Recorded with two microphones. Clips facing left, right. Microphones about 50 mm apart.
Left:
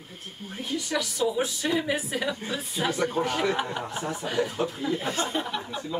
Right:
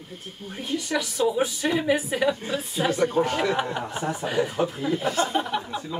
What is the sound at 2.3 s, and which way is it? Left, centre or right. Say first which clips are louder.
A woman's voice: right 3 dB; centre.